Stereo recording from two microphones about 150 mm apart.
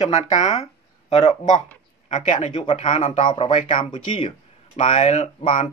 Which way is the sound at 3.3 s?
35° left (ahead or behind).